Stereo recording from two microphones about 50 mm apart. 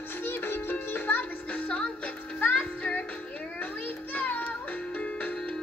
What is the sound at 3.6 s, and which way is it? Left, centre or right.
Children playing, left.